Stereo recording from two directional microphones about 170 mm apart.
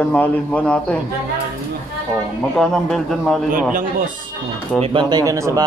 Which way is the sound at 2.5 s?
Centre (ahead or behind).